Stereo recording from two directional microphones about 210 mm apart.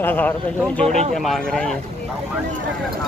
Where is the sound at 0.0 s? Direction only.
10° left (ahead or behind).